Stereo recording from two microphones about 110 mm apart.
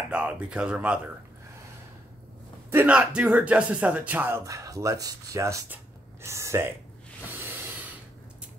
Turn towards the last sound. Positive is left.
turn(degrees=-20)  # may be behind; listen again after turning